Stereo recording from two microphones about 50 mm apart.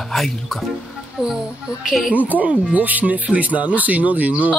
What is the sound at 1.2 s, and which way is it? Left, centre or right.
Speech, centre.